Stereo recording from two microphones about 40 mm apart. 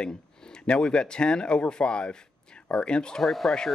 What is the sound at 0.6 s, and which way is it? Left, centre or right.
Speech, left.